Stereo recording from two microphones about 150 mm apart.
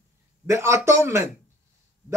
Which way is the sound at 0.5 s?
20° right (ahead or behind).